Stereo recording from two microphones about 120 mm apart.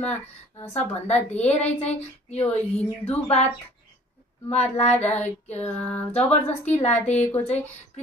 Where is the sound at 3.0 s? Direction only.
60° left (ahead or behind).